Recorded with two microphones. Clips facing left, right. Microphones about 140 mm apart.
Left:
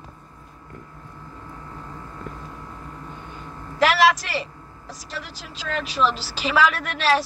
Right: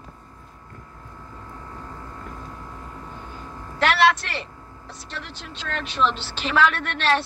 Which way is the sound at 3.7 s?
5° left (ahead or behind).